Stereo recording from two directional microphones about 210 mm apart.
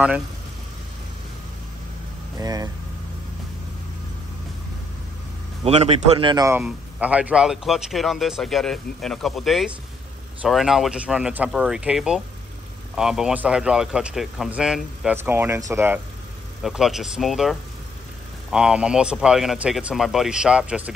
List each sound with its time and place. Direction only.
2.3 s speech: 15° right (ahead or behind)
5.6 s a man's voice: 30° right (ahead or behind)
6.6 s a man's voice: 5° right (ahead or behind)